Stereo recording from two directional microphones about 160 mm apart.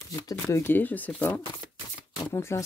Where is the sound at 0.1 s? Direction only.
20° left (ahead or behind).